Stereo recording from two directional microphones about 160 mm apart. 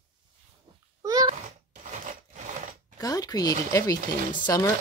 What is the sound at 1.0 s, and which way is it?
Babbling, 20° right (ahead or behind).